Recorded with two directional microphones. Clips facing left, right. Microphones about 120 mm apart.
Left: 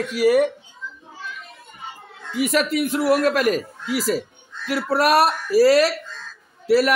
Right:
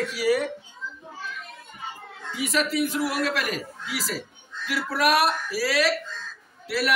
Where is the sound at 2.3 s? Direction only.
50° left (ahead or behind).